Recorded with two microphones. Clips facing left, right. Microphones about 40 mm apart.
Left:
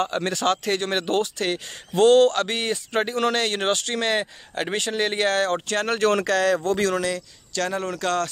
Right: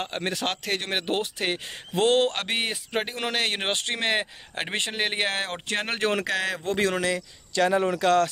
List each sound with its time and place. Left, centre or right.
0.0 s speech: centre